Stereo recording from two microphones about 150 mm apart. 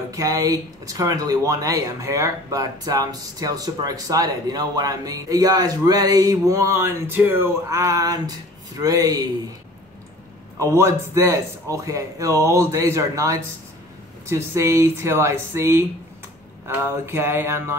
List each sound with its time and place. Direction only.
0.1 s speech: 25° right (ahead or behind)
10.6 s speech: 20° right (ahead or behind)